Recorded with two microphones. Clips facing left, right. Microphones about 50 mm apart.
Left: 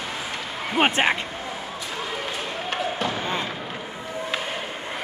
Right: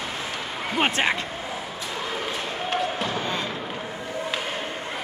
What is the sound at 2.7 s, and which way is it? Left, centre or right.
Basketball bounce, centre.